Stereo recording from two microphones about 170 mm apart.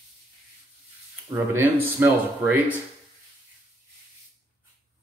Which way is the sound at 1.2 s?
10° right (ahead or behind).